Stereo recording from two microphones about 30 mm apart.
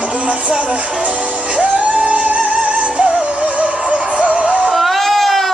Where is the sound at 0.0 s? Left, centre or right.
Right.